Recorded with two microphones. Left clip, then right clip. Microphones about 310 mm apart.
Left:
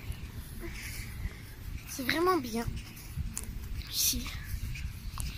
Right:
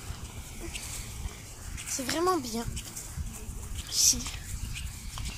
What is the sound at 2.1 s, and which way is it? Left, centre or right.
Speech, centre.